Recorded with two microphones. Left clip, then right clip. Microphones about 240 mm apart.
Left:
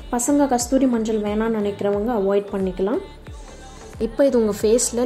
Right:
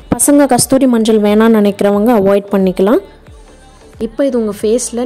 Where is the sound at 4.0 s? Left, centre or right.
Centre.